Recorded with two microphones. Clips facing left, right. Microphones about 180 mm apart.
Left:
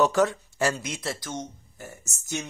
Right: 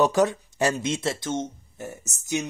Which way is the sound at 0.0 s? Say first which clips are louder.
Right 1 dB; 15° right (ahead or behind).